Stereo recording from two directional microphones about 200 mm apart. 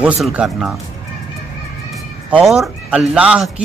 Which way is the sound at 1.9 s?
Centre (ahead or behind).